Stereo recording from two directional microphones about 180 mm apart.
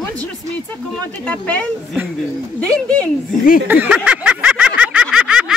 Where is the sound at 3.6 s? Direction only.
10° right (ahead or behind).